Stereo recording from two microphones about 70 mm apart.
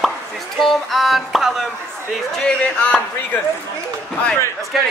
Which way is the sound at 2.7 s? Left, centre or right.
Left.